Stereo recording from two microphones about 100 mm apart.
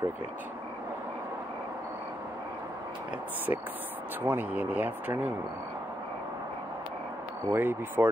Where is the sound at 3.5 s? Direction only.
30° right (ahead or behind).